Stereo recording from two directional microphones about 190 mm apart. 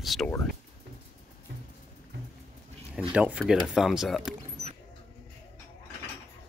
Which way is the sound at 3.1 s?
5° right (ahead or behind).